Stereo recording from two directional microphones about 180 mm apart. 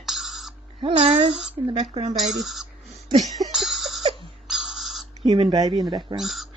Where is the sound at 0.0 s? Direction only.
Centre (ahead or behind).